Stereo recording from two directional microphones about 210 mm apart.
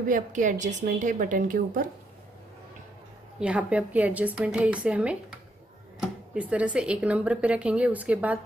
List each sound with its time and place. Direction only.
0.1 s a woman's voice: 35° right (ahead or behind)
3.3 s a woman's voice: 5° right (ahead or behind)